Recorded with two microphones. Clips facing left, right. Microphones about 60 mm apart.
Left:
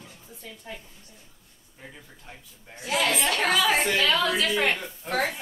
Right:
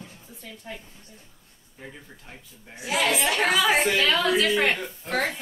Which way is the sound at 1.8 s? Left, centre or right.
Centre.